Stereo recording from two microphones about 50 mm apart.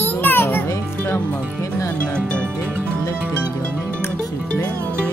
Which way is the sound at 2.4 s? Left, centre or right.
Right.